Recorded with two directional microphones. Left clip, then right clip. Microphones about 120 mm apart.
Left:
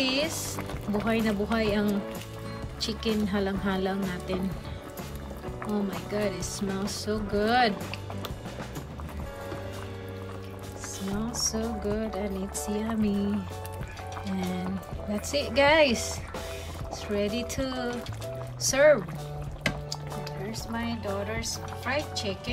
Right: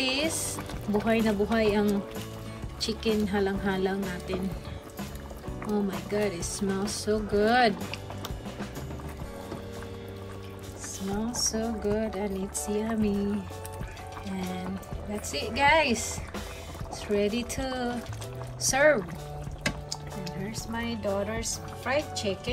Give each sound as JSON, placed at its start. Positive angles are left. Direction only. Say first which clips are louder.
{"t": 0.0, "sound": "boiling", "louder": "even", "side_deg": 10}
{"t": 0.9, "sound": "music", "louder": "right 2 dB", "side_deg": 10}
{"t": 5.7, "sound": "music", "louder": "right 2 dB", "side_deg": 5}
{"t": 11.3, "sound": "music", "louder": "even", "side_deg": 10}
{"t": 14.3, "sound": "music", "louder": "left 1 dB", "side_deg": 15}
{"t": 15.3, "sound": "speech", "louder": "left 2 dB", "side_deg": 25}
{"t": 17.1, "sound": "music", "louder": "right 2 dB", "side_deg": 5}
{"t": 20.7, "sound": "speech", "louder": "right 3 dB", "side_deg": 5}